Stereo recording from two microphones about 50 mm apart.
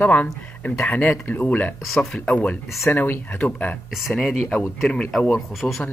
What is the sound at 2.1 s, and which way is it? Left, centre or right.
Speech, left.